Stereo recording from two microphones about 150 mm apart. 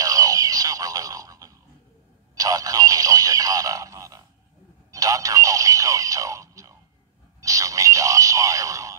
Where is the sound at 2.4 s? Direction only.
25° right (ahead or behind).